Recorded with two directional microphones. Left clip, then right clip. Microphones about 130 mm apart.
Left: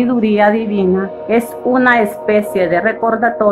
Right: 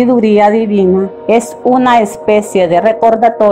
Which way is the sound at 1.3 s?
35° right (ahead or behind).